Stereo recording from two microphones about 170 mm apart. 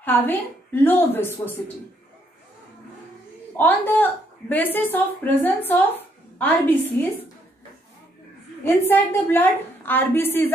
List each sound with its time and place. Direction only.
0.0 s a woman's voice: 10° left (ahead or behind)
3.5 s a woman's voice: 10° left (ahead or behind)
8.6 s a woman's voice: 10° left (ahead or behind)